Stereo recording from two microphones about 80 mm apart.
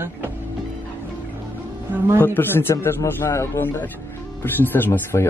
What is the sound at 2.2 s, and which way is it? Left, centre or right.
Speech, left.